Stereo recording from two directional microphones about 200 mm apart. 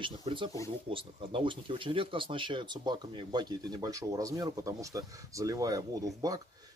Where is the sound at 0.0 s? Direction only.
25° right (ahead or behind).